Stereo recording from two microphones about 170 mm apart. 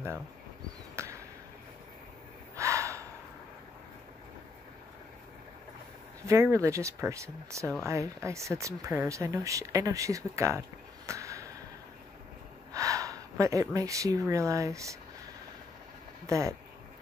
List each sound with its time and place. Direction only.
1.0 s a sound: 15° right (ahead or behind)
2.5 s gasp: 20° right (ahead or behind)
6.2 s speech: 15° right (ahead or behind)
11.1 s a sound: 20° right (ahead or behind)
12.7 s speech: 20° right (ahead or behind)
16.3 s speech: 15° right (ahead or behind)